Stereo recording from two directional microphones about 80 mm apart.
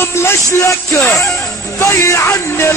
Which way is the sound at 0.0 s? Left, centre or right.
Left.